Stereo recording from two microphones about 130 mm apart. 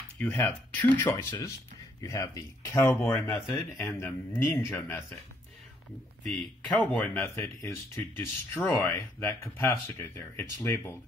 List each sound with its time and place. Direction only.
0.2 s speech: 15° left (ahead or behind)
6.8 s speech: 10° left (ahead or behind)